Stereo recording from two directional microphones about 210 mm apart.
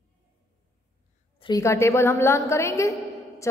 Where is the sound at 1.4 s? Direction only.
15° left (ahead or behind).